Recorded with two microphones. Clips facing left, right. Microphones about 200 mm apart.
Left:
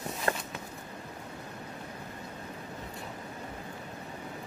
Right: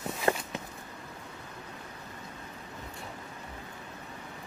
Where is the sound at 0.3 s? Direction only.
20° right (ahead or behind).